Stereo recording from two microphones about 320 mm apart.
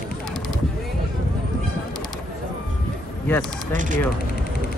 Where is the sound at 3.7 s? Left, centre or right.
Right.